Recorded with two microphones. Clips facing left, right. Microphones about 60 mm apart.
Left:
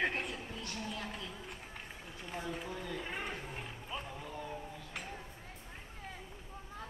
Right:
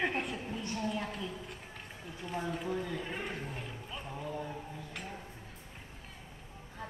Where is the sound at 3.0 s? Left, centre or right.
Centre.